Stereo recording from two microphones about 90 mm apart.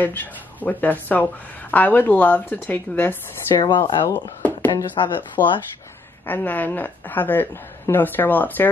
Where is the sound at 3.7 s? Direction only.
60° left (ahead or behind).